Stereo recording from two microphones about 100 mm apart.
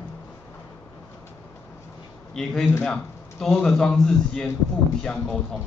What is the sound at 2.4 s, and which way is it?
A man's voice, 5° left (ahead or behind).